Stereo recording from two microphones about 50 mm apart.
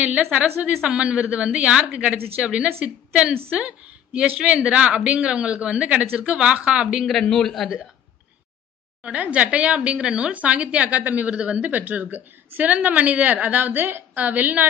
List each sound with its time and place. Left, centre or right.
0.3 s speech: right
7.2 s a man's voice: centre
9.0 s speech: right
11.8 s a woman's voice: right